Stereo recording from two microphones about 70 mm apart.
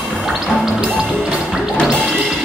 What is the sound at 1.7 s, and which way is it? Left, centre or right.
Music, centre.